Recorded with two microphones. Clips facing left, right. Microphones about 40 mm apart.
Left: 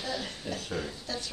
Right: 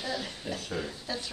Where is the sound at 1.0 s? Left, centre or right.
Centre.